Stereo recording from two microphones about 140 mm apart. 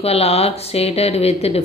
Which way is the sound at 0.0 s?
45° left (ahead or behind).